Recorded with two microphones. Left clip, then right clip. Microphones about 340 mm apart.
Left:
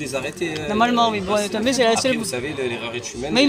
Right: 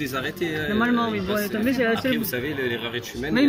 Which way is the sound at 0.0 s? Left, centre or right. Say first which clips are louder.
Left 2 dB; centre.